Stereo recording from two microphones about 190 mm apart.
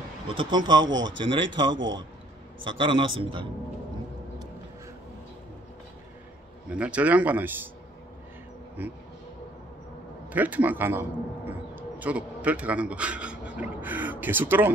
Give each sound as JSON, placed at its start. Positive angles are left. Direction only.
{"t": 0.3, "sound": "a man's voice", "side_deg": -25}
{"t": 6.7, "sound": "speech", "side_deg": -5}
{"t": 8.8, "sound": "speech", "side_deg": -10}
{"t": 10.3, "sound": "a man's voice", "side_deg": -10}